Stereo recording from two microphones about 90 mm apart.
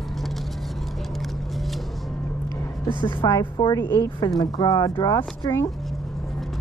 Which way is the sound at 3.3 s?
50° left (ahead or behind).